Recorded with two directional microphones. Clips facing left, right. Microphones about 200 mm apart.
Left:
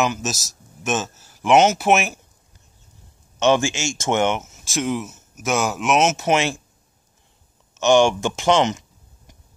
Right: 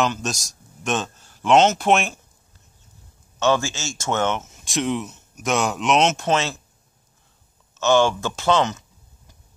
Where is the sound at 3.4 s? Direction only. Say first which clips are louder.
Left 3 dB; 20° left (ahead or behind).